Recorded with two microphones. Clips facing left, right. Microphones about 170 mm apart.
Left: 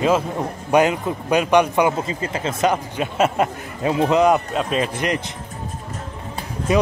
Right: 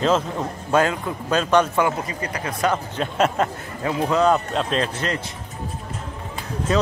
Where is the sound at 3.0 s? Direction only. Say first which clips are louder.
Left 1 dB; 10° left (ahead or behind).